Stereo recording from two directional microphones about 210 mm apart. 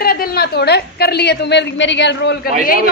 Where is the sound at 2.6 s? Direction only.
45° left (ahead or behind).